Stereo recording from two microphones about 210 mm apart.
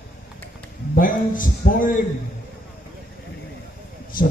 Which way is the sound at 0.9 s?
40° left (ahead or behind).